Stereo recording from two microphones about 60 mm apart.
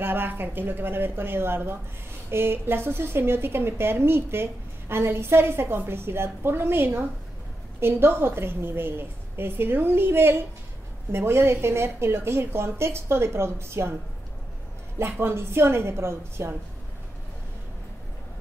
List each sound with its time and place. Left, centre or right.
0.0 s a woman's voice: right
15.0 s a woman's voice: right